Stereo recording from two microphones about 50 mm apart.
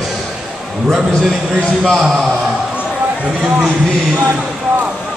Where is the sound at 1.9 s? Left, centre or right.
Centre.